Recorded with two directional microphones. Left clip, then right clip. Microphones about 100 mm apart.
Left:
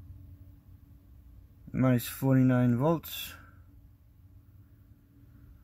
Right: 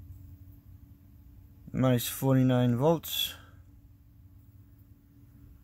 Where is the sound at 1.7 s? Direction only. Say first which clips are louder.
Right 1 dB; 5° right (ahead or behind).